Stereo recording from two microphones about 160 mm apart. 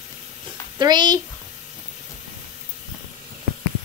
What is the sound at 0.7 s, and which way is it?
Speech, 25° right (ahead or behind).